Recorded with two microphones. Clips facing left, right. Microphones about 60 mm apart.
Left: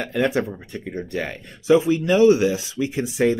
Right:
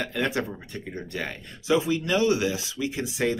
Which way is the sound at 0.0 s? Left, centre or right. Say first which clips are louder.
Left 6 dB; left.